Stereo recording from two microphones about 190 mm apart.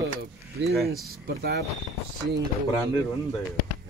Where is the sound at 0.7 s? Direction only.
Centre (ahead or behind).